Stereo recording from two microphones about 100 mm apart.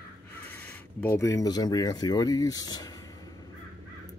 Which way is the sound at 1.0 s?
30° left (ahead or behind).